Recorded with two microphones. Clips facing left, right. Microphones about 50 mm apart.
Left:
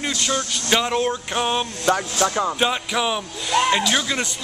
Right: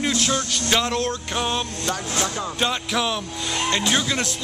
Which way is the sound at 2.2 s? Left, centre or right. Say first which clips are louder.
Left 10 dB; left.